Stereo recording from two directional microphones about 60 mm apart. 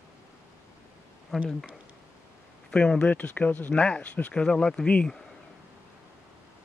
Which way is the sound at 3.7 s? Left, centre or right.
Centre.